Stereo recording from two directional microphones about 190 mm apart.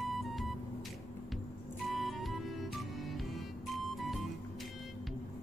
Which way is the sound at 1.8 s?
Centre (ahead or behind).